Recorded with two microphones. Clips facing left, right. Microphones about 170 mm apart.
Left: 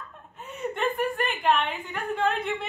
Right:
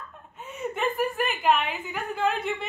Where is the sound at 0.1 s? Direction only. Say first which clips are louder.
Even; centre (ahead or behind).